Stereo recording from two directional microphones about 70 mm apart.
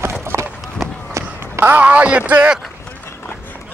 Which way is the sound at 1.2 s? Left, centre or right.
Right.